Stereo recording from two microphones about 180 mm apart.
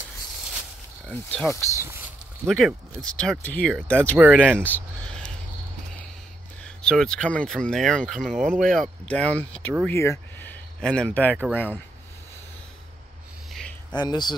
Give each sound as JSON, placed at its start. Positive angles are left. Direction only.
{"t": 1.0, "sound": "speech", "side_deg": 5}
{"t": 1.8, "sound": "speech", "side_deg": -15}
{"t": 2.4, "sound": "speech", "side_deg": 5}
{"t": 6.6, "sound": "speech", "side_deg": 5}
{"t": 11.3, "sound": "speech", "side_deg": -5}
{"t": 13.5, "sound": "a sound", "side_deg": 0}
{"t": 13.9, "sound": "speech", "side_deg": 25}